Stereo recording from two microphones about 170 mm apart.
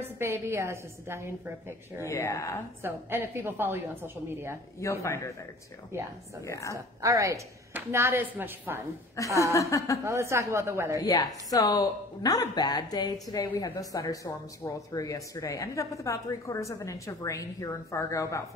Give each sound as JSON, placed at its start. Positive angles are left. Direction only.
{"t": 0.0, "sound": "a woman's voice", "side_deg": -15}
{"t": 2.0, "sound": "speech", "side_deg": 15}
{"t": 2.8, "sound": "a woman's voice", "side_deg": -15}
{"t": 5.0, "sound": "speech", "side_deg": 15}
{"t": 5.9, "sound": "a woman's voice", "side_deg": -15}
{"t": 6.4, "sound": "speech", "side_deg": 15}
{"t": 6.7, "sound": "a woman's voice", "side_deg": -20}
{"t": 9.4, "sound": "speech", "side_deg": 20}
{"t": 10.0, "sound": "a woman's voice", "side_deg": -15}
{"t": 11.0, "sound": "speech", "side_deg": 20}